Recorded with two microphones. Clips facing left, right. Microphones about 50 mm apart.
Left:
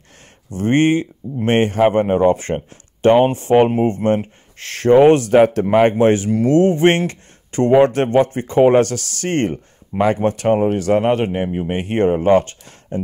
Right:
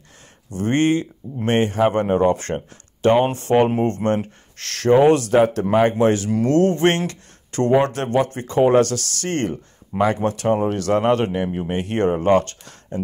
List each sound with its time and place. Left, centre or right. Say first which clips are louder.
0.5 s speech: left 3 dB; left
1.6 s speech: left 3 dB; left
1.9 s speech: left 3 dB; left
4.8 s speech: left 4 dB; left
6.5 s speech: left 4 dB; centre
8.8 s speech: left 1 dB; right
9.2 s speech: left 6 dB; left
10.6 s speech: left 3 dB; centre
11.7 s speech: left 3 dB; left